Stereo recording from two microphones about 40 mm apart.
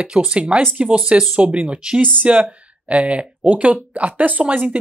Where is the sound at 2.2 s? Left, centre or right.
Right.